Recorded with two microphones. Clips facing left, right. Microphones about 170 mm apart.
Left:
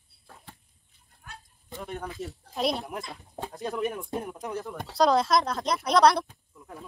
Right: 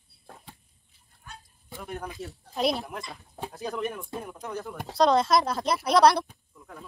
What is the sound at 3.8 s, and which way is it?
Speech, 15° left (ahead or behind).